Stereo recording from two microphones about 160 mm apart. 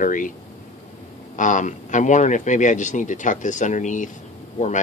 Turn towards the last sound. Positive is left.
turn(degrees=50)  # may be behind; listen again after turning